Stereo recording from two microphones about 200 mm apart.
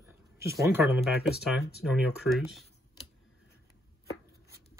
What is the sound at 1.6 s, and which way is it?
Speech, 55° left (ahead or behind).